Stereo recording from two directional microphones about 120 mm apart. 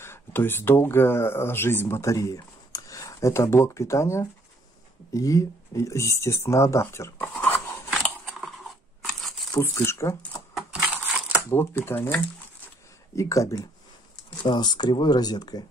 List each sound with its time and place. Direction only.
0.0 s speech: 20° left (ahead or behind)
8.4 s a sound: centre (ahead or behind)
9.5 s speech: 20° left (ahead or behind)
10.7 s a sound: 10° right (ahead or behind)
11.5 s speech: 20° left (ahead or behind)
14.4 s speech: 40° left (ahead or behind)